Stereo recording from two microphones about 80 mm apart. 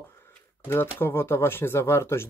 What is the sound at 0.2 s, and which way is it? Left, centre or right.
Speech, left.